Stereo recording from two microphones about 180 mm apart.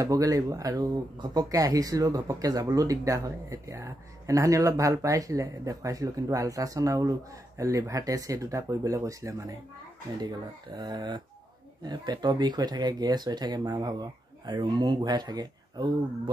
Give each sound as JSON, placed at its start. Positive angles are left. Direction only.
{"t": 0.0, "sound": "speech", "side_deg": -20}